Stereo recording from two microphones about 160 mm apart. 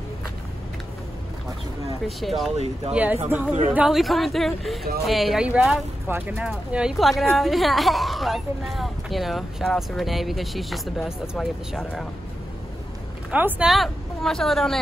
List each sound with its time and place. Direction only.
2.0 s speech: centre (ahead or behind)
2.5 s speech: 40° right (ahead or behind)
2.9 s speech: 10° right (ahead or behind)
6.0 s speech: 10° right (ahead or behind)
13.3 s speech: 10° right (ahead or behind)